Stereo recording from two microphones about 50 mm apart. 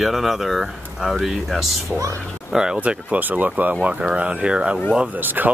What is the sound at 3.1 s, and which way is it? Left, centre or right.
Speech, right.